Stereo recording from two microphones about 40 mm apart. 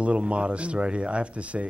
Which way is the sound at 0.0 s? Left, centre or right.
Right.